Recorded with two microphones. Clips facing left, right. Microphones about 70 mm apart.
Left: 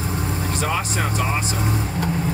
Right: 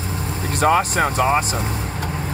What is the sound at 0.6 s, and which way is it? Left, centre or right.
Music, right.